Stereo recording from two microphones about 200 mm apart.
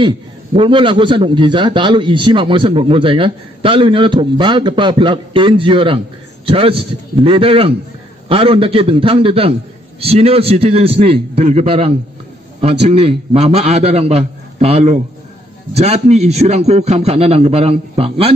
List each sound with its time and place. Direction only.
0.6 s a man's voice: 25° right (ahead or behind)